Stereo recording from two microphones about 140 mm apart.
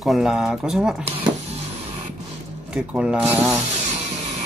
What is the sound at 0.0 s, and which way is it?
Speech, centre (ahead or behind).